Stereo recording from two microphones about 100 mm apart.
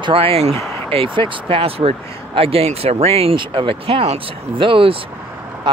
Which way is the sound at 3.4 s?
60° right (ahead or behind).